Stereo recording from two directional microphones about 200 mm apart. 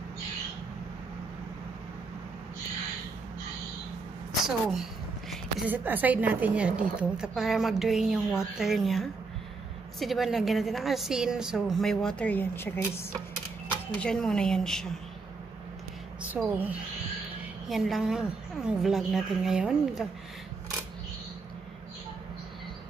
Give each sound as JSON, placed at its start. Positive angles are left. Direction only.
{"t": 5.7, "sound": "a woman's voice", "side_deg": -10}
{"t": 13.9, "sound": "a woman's voice", "side_deg": 5}
{"t": 16.2, "sound": "a woman's voice", "side_deg": -10}